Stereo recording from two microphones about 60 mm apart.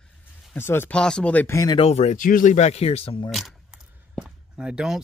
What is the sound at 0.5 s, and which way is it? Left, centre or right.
Speech, left.